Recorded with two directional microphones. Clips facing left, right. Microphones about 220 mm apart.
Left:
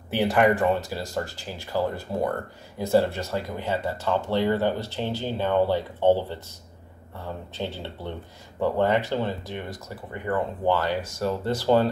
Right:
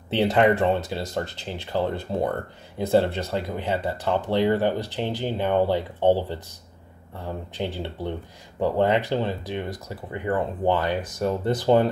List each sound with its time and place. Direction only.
0.1 s speech: 20° right (ahead or behind)
7.5 s speech: 15° right (ahead or behind)